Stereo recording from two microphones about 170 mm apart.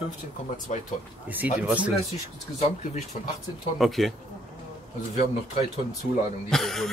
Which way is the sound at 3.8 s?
Centre (ahead or behind).